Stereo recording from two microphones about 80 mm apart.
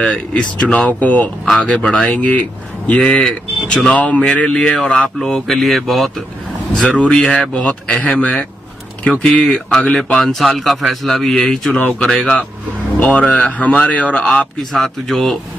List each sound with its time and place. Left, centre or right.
0.0 s speech: centre